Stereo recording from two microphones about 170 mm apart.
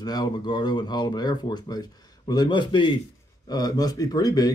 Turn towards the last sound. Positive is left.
turn(degrees=20)  # may be behind; listen again after turning